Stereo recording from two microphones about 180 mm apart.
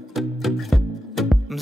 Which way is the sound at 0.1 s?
Centre (ahead or behind).